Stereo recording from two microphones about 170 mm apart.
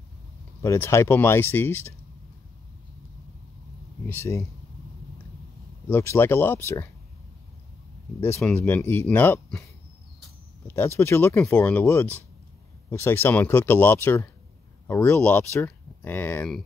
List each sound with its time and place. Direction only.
0.6 s speech: 15° left (ahead or behind)
4.1 s speech: 15° left (ahead or behind)
5.9 s speech: 15° left (ahead or behind)
8.5 s speech: 15° left (ahead or behind)
11.0 s speech: 15° left (ahead or behind)